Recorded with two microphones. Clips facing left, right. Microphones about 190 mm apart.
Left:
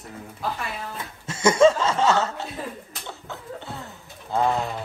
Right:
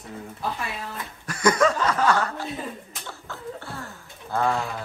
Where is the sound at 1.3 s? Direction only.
25° left (ahead or behind).